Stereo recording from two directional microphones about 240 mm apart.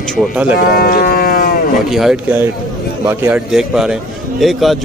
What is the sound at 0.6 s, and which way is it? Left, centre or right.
Speech, left.